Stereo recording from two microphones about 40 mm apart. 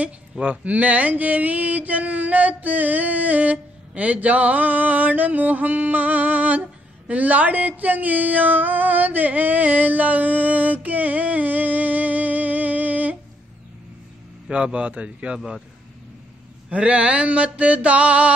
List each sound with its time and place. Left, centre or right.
0.0 s speech: right
14.5 s a man's voice: right
15.3 s a man's voice: centre
16.7 s a sound: right